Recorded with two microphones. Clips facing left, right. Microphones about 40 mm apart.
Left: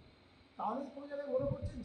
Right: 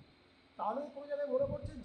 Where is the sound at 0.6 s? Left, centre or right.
Centre.